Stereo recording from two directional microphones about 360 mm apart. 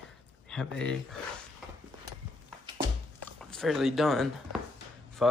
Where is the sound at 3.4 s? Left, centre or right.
Centre.